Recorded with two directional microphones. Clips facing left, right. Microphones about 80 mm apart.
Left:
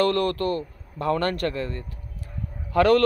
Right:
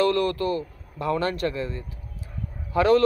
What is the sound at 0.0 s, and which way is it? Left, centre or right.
A man's voice, left.